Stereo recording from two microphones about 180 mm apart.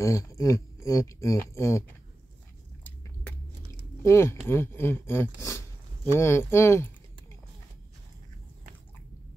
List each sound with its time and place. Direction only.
0.0 s speech: 15° left (ahead or behind)
4.0 s speech: 15° left (ahead or behind)